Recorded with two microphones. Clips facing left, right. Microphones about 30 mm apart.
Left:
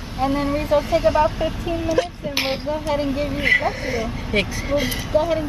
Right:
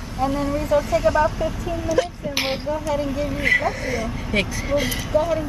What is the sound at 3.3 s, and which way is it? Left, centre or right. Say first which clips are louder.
Speech: left 1 dB; centre.